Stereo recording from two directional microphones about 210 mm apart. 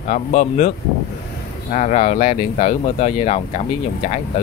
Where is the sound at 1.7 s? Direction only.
35° left (ahead or behind).